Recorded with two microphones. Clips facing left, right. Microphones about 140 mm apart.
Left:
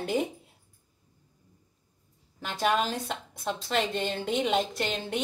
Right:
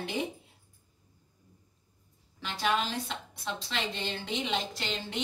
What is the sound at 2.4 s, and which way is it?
A woman's voice, 45° left (ahead or behind).